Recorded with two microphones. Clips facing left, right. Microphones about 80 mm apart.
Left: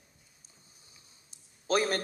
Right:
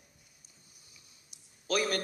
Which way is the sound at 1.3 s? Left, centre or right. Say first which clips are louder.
Left 4 dB; left.